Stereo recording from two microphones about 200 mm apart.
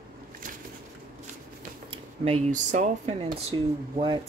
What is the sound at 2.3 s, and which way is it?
Speech, 35° right (ahead or behind).